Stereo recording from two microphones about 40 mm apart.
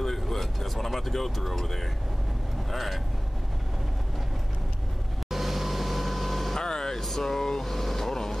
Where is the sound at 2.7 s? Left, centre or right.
Centre.